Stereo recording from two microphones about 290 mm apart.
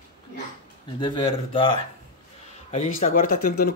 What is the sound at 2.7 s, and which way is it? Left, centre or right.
Speech, left.